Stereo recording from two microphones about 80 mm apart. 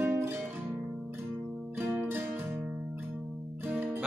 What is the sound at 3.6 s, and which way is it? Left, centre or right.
Music, centre.